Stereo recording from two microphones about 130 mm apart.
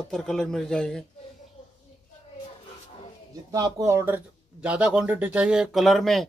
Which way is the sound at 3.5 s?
25° right (ahead or behind).